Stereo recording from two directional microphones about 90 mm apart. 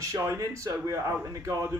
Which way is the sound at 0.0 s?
35° right (ahead or behind).